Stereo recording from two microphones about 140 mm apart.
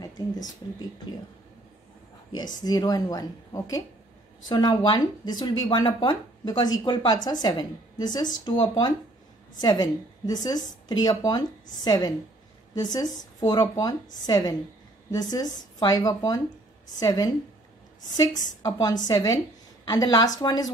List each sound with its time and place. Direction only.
2.3 s a woman's voice: 30° left (ahead or behind)